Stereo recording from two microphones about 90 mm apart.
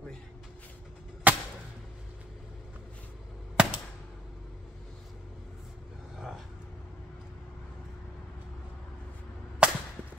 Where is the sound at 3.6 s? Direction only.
15° right (ahead or behind).